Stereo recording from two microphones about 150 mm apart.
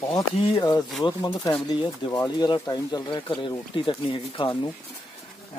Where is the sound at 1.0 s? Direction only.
25° left (ahead or behind).